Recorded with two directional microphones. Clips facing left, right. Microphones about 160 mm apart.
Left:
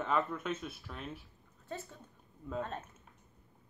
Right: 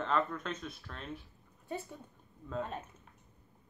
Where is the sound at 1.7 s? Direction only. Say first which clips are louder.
Right 3 dB; 15° right (ahead or behind).